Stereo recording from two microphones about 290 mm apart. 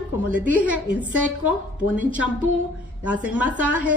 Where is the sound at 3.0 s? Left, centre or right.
Centre.